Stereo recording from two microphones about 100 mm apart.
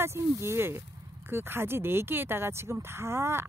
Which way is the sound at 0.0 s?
25° right (ahead or behind).